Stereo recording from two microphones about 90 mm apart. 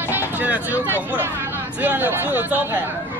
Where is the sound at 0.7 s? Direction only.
20° right (ahead or behind).